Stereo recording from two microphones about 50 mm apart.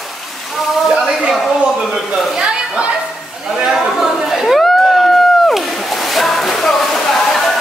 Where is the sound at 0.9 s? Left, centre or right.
Centre.